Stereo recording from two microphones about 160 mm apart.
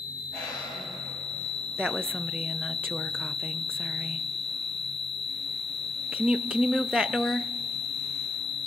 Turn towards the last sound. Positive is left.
turn(degrees=-90)